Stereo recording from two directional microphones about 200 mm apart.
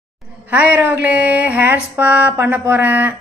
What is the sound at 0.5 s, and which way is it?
A woman's voice, 10° right (ahead or behind).